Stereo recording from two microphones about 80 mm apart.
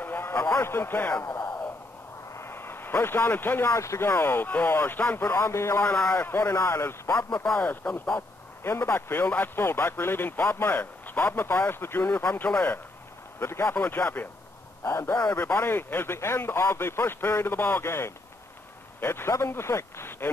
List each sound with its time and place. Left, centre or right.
0.0 s a sound: left
1.2 s a sound: left
2.3 s speech: left
4.1 s speech: left
5.9 s a man's voice: centre; by 7.2 s left
7.4 s speech: centre
8.6 s speech: left
12.4 s speech: centre
13.4 s speech: left
15.3 s a man's voice: left